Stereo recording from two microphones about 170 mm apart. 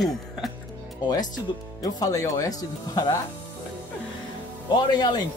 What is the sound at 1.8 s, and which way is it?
Speech, 20° left (ahead or behind).